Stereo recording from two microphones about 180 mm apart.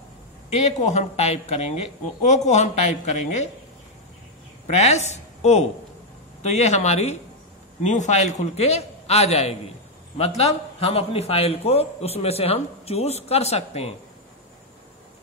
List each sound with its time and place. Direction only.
0.5 s a man's voice: 35° left (ahead or behind)
4.6 s a woman's voice: 35° left (ahead or behind)